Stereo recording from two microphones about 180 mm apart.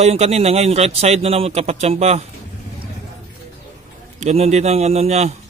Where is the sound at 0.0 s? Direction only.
35° right (ahead or behind).